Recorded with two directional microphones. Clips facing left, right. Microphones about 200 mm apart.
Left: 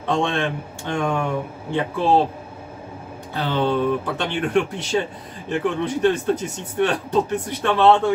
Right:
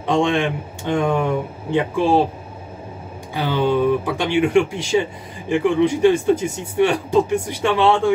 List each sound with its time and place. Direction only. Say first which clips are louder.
0.0 s speech: right 4 dB; 15° right (ahead or behind)
3.3 s speech: right 3 dB; 10° right (ahead or behind)